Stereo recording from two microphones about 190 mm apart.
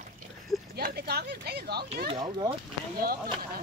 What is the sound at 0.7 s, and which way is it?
Speech, 55° right (ahead or behind).